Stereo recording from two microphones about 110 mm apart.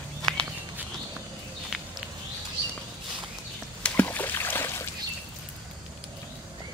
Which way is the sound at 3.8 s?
15° left (ahead or behind).